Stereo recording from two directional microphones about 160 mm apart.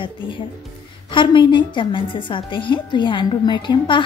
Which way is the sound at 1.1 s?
30° left (ahead or behind).